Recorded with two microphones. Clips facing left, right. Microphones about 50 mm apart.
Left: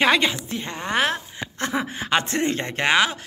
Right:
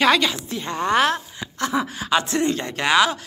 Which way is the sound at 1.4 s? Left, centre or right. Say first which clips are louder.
Right 2 dB; left.